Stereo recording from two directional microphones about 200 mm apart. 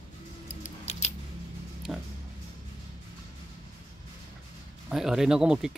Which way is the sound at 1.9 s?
Centre (ahead or behind).